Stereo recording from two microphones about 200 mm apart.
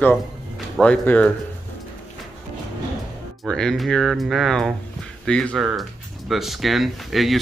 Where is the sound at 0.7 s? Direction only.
5° left (ahead or behind).